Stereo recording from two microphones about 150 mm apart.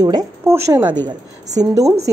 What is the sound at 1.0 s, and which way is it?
A woman's voice, 25° right (ahead or behind).